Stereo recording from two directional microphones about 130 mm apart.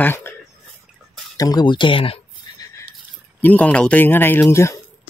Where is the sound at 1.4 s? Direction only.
30° left (ahead or behind).